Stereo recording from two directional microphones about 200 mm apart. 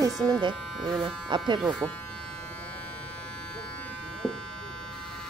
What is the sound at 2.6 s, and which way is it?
Electric shaver, 5° left (ahead or behind).